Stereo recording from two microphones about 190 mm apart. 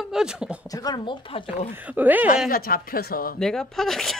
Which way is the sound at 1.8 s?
10° right (ahead or behind).